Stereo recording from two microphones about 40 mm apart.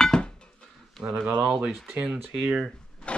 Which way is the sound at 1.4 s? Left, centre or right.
Centre.